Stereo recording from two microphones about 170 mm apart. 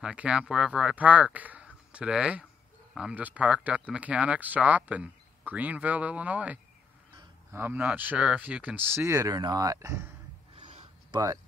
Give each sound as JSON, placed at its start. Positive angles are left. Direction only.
{"t": 0.0, "sound": "speech", "side_deg": -5}
{"t": 10.6, "sound": "a sound", "side_deg": -40}
{"t": 11.1, "sound": "speech", "side_deg": -25}